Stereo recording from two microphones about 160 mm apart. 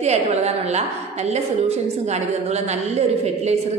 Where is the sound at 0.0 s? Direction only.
45° right (ahead or behind).